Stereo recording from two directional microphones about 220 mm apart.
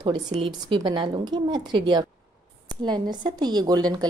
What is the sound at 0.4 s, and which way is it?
A woman's voice, 20° right (ahead or behind).